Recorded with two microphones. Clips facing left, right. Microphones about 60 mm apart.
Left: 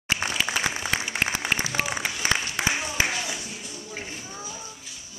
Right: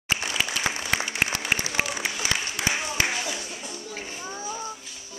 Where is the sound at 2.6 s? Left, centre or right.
Left.